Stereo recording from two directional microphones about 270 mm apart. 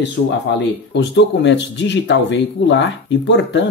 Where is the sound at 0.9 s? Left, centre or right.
Left.